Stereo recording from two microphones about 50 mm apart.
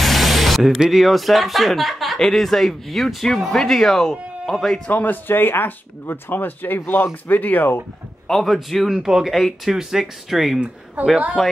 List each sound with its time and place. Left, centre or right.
0.0 s speech: centre
4.8 s speech: left
8.3 s speech: centre
8.9 s speech: centre
11.0 s a woman's voice: right
11.4 s speech: centre